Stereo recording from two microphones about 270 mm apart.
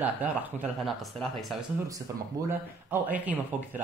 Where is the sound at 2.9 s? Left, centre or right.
Centre.